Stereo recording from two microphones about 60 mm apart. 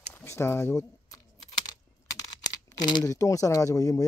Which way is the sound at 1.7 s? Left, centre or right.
Left.